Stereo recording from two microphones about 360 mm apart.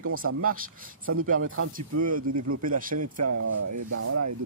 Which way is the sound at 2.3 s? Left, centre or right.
Right.